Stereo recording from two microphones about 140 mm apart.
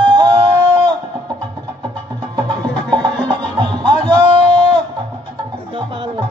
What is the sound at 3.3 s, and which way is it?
Music, 35° right (ahead or behind).